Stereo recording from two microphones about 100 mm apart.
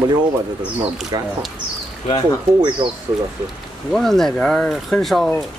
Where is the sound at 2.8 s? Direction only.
70° right (ahead or behind).